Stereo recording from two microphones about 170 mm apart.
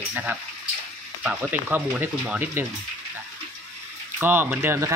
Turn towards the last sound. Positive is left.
turn(degrees=-15)  # may be behind; listen again after turning